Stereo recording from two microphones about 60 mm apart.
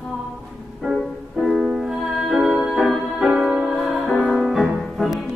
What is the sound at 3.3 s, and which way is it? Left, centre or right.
Music, centre.